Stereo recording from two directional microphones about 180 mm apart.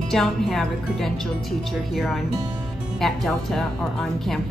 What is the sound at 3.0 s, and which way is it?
A woman's voice, centre (ahead or behind).